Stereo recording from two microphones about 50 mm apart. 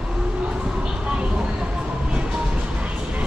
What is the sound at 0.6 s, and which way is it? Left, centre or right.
Train, centre.